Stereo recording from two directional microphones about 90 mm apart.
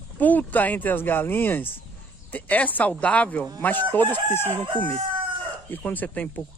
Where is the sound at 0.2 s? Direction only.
20° left (ahead or behind).